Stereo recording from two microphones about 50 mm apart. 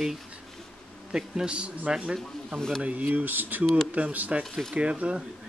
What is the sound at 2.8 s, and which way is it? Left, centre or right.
Speech, right.